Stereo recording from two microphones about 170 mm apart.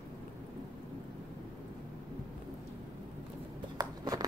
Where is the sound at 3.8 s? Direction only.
20° right (ahead or behind).